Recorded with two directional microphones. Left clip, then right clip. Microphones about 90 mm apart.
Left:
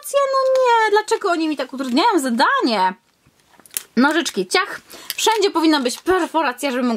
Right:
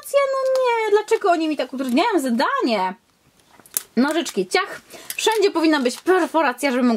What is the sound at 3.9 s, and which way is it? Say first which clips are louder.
Speech: left 4 dB; 45° left (ahead or behind).